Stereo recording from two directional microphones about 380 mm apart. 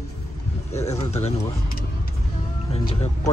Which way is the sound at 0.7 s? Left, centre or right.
Centre.